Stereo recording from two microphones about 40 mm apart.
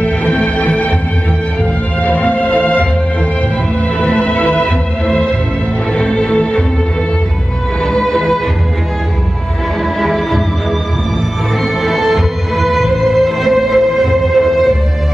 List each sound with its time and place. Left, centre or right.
0.0 s music: left
2.0 s music: left
4.0 s music: left
7.9 s music: centre
9.9 s music: centre
11.8 s music: centre